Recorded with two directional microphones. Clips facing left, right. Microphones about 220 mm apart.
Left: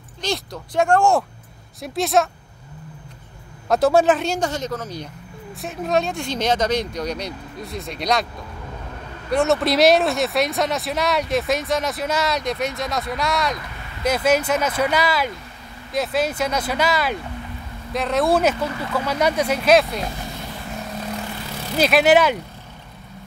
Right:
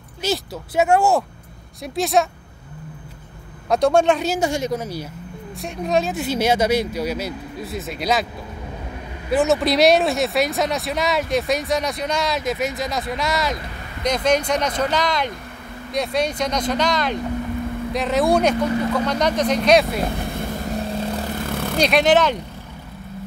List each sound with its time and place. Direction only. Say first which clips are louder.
0.2 s speech: right 2 dB; 5° right (ahead or behind)
3.6 s speech: even; centre (ahead or behind)
5.6 s speech: right 1 dB; centre (ahead or behind)
9.3 s speech: right 1 dB; centre (ahead or behind)
20.0 s vehicle: right 5 dB; 55° right (ahead or behind); by 21.3 s 30° right (ahead or behind)
21.5 s vehicle: right 6 dB; 55° right (ahead or behind)
21.7 s speech: left 1 dB; 5° left (ahead or behind)